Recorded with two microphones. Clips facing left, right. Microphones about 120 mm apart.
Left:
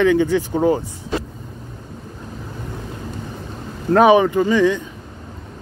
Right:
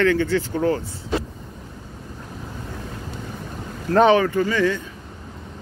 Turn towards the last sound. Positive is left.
turn(degrees=15)  # may be behind; listen again after turning